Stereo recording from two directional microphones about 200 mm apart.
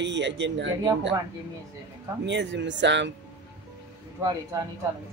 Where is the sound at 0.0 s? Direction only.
60° right (ahead or behind).